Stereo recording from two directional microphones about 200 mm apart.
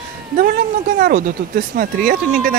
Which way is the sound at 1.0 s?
45° right (ahead or behind).